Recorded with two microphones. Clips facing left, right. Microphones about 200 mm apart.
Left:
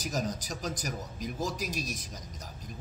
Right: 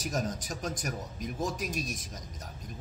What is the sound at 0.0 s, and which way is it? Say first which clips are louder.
A man's voice: even; centre (ahead or behind).